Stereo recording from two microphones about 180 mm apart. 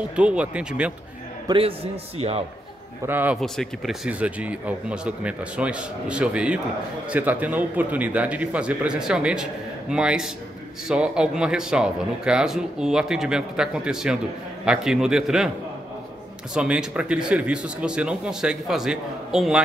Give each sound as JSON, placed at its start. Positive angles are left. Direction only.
{"t": 0.1, "sound": "a man's voice", "side_deg": -5}
{"t": 1.5, "sound": "a man's voice", "side_deg": -30}
{"t": 3.1, "sound": "a man's voice", "side_deg": -10}
{"t": 3.3, "sound": "a man's voice", "side_deg": 0}
{"t": 16.5, "sound": "a man's voice", "side_deg": -5}